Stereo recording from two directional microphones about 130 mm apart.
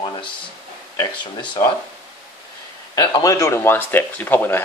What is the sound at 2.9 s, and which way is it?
Speech, 25° left (ahead or behind).